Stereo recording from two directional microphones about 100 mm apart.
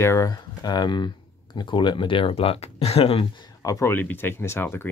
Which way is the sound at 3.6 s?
35° left (ahead or behind).